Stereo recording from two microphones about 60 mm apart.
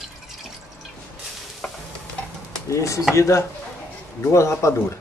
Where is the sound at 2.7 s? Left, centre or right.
Left.